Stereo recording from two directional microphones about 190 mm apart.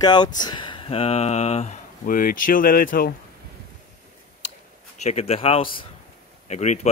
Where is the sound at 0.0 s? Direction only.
20° left (ahead or behind); by 3.1 s 50° left (ahead or behind).